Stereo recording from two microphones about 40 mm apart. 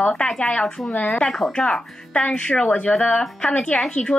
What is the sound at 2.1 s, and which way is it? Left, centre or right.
Speech, left.